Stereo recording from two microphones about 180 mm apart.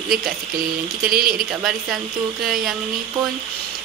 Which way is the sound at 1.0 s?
55° right (ahead or behind).